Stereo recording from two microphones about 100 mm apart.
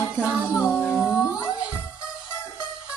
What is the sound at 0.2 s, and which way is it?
Music, 15° right (ahead or behind).